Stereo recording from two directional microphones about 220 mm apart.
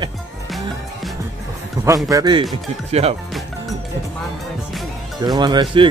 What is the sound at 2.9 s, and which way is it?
Speech, 30° right (ahead or behind).